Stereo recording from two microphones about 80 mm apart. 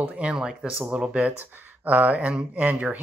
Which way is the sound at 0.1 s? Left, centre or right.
Centre.